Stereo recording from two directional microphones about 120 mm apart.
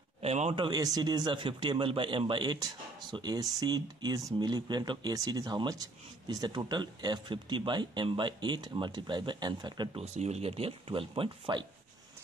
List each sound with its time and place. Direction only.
0.2 s speech: 60° right (ahead or behind)
0.6 s a man's voice: 35° right (ahead or behind)
9.9 s a man's voice: 65° right (ahead or behind); by 11.6 s 45° right (ahead or behind)